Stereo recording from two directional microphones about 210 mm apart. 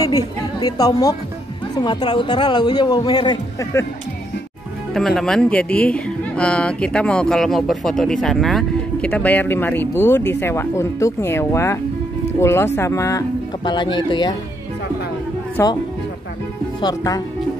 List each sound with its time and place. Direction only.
0.0 s a woman's voice: 15° left (ahead or behind)
4.9 s speech: centre (ahead or behind); by 14.3 s 20° left (ahead or behind)
15.5 s speech: 20° left (ahead or behind)
16.8 s speech: 15° left (ahead or behind)